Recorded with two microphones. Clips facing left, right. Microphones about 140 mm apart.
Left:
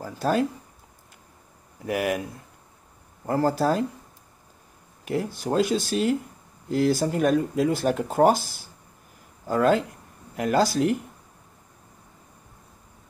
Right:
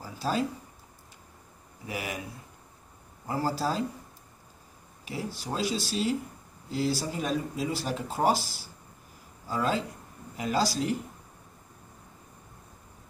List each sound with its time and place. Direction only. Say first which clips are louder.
0.0 s speech: left 6 dB; 50° left (ahead or behind)
1.9 s speech: left 10 dB; 55° left (ahead or behind)
3.3 s speech: left 7 dB; 55° left (ahead or behind)
5.0 s speech: left 8 dB; 50° left (ahead or behind)